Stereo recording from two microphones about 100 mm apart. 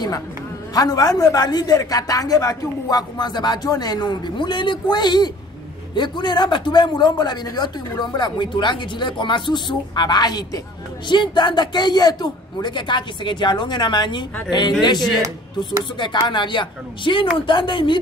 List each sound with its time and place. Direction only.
0.7 s a man's voice: 40° left (ahead or behind)
16.0 s speech: 50° left (ahead or behind)